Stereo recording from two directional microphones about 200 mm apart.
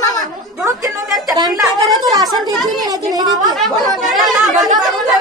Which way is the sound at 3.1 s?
20° right (ahead or behind).